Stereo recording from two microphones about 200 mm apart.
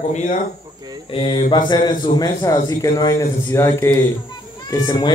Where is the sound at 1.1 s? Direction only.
25° left (ahead or behind).